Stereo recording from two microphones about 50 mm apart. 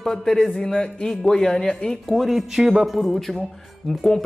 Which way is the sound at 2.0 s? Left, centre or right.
Centre.